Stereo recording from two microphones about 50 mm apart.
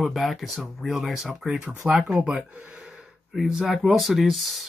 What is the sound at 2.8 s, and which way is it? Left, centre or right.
Gasp, centre.